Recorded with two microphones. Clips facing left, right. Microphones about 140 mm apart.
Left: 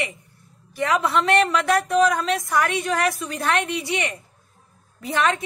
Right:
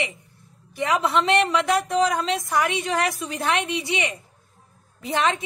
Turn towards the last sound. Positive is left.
turn(degrees=-20)  # may be behind; listen again after turning